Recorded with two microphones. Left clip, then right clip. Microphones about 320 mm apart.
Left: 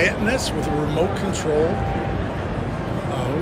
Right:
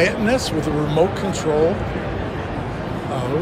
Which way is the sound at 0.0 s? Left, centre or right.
Centre.